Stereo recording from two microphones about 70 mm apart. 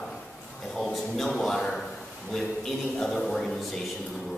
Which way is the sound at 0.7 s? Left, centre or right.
Centre.